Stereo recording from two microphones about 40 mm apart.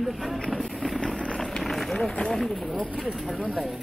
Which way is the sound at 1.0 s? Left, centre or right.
Left.